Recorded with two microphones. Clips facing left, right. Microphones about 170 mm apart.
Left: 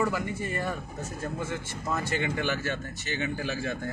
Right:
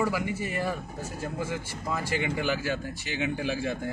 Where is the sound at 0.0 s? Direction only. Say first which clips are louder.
Right 1 dB; 10° right (ahead or behind).